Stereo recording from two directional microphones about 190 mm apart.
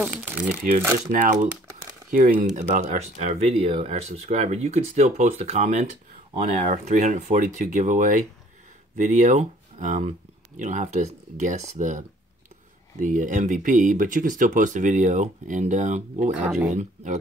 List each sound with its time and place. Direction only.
0.0 s speech: 5° right (ahead or behind)
1.1 s speech: 45° right (ahead or behind)
13.0 s speech: 45° right (ahead or behind)
16.3 s speech: 5° right (ahead or behind)
16.7 s speech: 40° right (ahead or behind)